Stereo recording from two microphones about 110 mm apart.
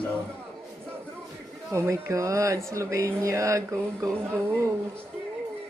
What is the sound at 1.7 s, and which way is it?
Speech, 25° right (ahead or behind).